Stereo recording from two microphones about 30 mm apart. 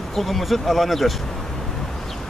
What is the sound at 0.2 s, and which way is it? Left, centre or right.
Speech, centre.